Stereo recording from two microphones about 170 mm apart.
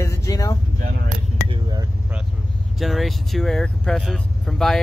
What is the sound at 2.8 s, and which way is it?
Vehicle, centre (ahead or behind).